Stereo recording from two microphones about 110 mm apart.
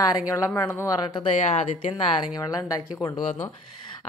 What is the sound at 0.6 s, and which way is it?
Speech, 20° left (ahead or behind).